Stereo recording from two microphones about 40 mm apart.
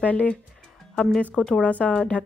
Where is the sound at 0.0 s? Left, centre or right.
Left.